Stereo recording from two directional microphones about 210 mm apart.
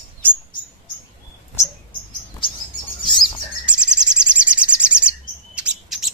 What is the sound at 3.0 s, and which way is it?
Bird, 20° left (ahead or behind).